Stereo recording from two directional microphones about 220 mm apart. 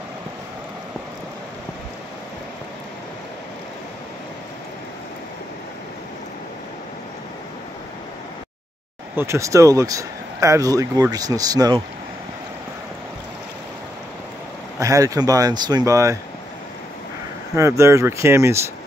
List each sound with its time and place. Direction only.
9.1 s speech: 10° right (ahead or behind)
14.8 s speech: 15° right (ahead or behind)
17.6 s speech: 15° right (ahead or behind)